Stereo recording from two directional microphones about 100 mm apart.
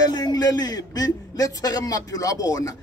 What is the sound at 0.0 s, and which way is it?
A man's voice, 40° left (ahead or behind).